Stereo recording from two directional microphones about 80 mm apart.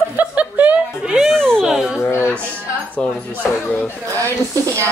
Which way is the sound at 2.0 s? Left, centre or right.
Left.